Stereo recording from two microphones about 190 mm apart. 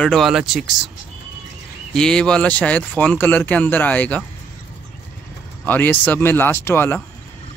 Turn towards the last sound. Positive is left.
turn(degrees=10)  # may be behind; listen again after turning